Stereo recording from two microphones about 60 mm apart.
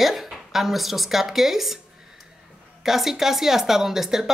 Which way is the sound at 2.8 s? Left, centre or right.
Centre.